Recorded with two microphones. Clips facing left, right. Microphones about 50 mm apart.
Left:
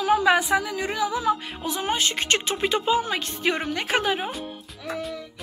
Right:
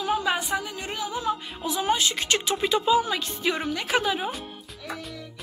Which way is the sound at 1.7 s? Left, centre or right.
Left.